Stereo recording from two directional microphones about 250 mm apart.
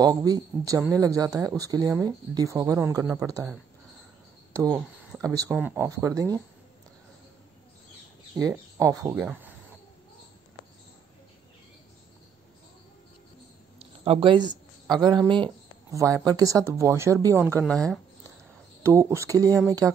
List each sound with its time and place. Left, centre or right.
0.0 s speech: centre
4.7 s speech: centre
8.4 s speech: centre
13.7 s a sound: right
14.9 s speech: centre
17.6 s speech: centre
18.8 s speech: centre